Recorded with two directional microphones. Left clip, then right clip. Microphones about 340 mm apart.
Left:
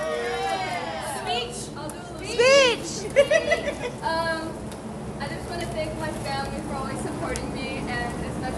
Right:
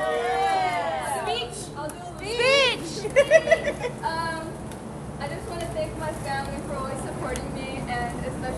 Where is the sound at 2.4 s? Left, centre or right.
Left.